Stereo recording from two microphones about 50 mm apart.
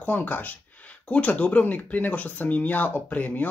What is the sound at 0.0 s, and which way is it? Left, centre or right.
Speech, left.